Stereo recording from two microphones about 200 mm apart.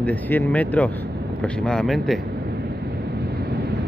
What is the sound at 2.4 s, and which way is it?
Wind noise, 55° right (ahead or behind).